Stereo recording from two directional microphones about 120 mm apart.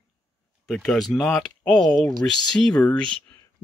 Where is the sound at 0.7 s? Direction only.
5° left (ahead or behind).